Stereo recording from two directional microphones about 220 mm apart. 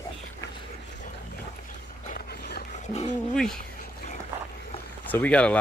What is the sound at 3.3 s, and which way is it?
Speech, 5° left (ahead or behind).